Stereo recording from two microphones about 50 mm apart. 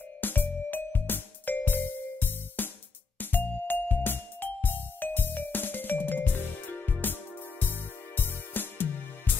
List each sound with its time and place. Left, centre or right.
0.2 s music: left
8.2 s music: left